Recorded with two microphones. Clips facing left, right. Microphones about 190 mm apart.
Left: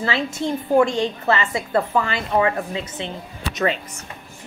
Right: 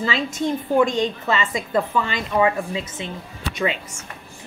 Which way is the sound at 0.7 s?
15° right (ahead or behind).